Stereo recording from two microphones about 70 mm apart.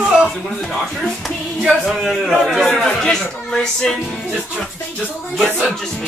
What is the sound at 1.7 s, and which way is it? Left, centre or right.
A man's voice, centre.